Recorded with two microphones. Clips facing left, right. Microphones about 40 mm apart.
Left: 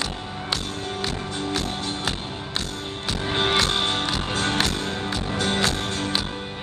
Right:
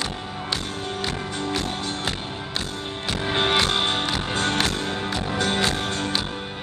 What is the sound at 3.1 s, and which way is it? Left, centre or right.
Music, centre.